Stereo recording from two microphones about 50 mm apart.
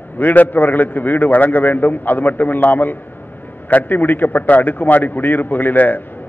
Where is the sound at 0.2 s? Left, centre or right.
Left.